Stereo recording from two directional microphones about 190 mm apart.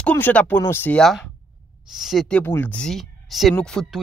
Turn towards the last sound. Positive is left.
turn(degrees=0)  # may be behind; listen again after turning